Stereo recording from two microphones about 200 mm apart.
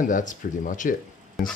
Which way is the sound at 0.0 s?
40° left (ahead or behind).